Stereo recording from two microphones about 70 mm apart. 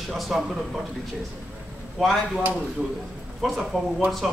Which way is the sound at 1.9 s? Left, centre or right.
Centre.